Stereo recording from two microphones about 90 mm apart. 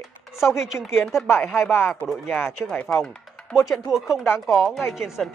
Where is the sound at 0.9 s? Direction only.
Centre (ahead or behind).